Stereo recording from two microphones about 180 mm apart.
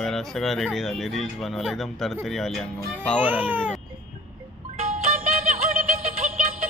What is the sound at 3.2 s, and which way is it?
Speech, 10° right (ahead or behind).